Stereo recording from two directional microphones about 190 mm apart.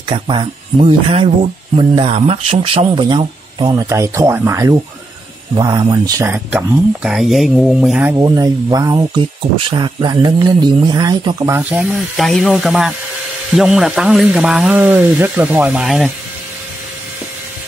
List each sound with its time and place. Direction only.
0.1 s speech: 25° right (ahead or behind); by 8.2 s 5° right (ahead or behind)
8.2 s speech: 20° right (ahead or behind)
12.2 s speech: centre (ahead or behind)